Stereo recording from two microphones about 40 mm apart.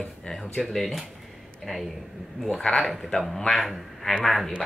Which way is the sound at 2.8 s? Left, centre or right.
Centre.